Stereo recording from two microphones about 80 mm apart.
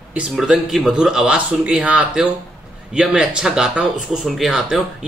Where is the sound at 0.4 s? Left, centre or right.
Centre.